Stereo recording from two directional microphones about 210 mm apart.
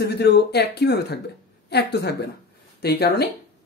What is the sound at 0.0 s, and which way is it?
Speech, 50° left (ahead or behind).